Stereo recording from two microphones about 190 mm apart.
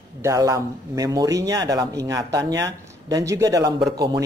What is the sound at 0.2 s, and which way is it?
A man's voice, 15° right (ahead or behind).